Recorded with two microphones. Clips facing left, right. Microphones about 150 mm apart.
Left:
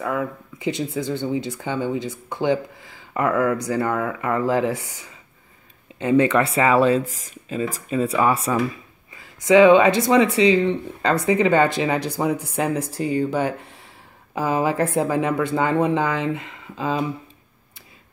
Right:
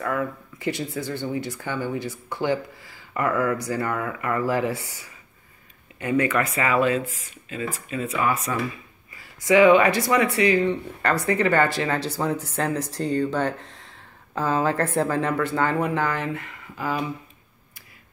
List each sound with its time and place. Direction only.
0.0 s speech: 15° left (ahead or behind)
9.2 s speech: 20° left (ahead or behind)